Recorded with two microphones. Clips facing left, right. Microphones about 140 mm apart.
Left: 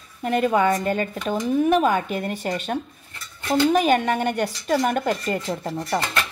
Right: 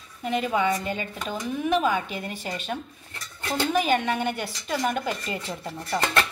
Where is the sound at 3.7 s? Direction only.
45° left (ahead or behind).